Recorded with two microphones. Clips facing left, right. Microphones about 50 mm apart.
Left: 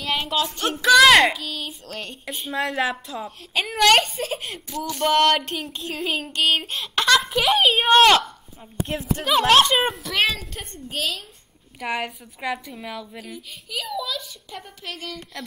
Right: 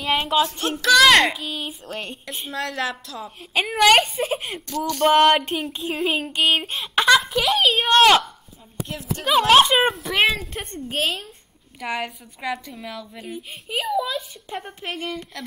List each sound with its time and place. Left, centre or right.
0.3 s child singing: centre
0.8 s child singing: centre
2.5 s a woman's voice: centre
3.3 s child singing: centre
4.6 s a woman's voice: centre
5.0 s child singing: centre
7.2 s a child's voice: centre
10.0 s a woman's voice: centre
10.6 s a woman's voice: right
11.8 s a woman's voice: centre
13.7 s a woman's voice: right
15.0 s a woman's voice: centre